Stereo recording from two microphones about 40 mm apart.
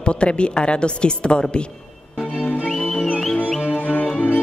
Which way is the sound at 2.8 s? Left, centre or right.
Left.